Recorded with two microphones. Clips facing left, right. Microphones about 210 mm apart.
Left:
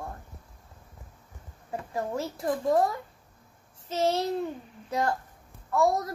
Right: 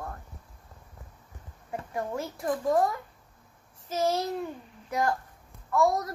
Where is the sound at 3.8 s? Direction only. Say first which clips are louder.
Left 1 dB; 25° left (ahead or behind).